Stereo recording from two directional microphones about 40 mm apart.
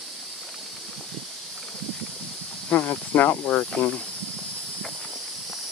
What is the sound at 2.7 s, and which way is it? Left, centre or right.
Speech, left.